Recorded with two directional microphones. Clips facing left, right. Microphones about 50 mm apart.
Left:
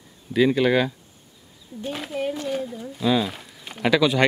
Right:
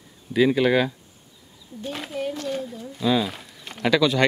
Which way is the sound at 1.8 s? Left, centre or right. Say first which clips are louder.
Left 1 dB; centre.